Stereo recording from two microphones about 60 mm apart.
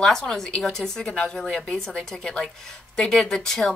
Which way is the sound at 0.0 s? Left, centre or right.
Centre.